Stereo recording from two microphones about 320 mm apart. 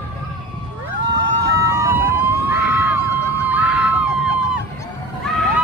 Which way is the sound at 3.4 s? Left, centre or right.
Centre.